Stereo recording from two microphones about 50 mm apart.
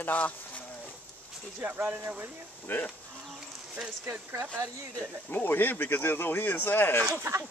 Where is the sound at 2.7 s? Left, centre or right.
Left.